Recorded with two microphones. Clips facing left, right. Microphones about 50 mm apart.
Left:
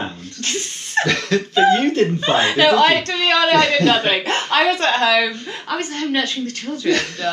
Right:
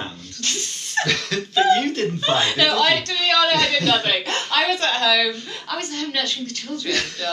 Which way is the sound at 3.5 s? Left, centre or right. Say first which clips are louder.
Left 6 dB; centre.